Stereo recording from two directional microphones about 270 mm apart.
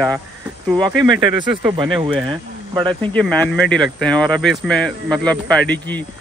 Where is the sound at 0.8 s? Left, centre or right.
Centre.